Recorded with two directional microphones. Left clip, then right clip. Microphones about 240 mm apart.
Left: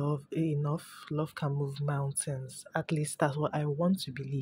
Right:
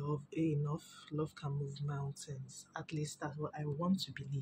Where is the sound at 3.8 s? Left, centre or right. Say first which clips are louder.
Left 6 dB; left.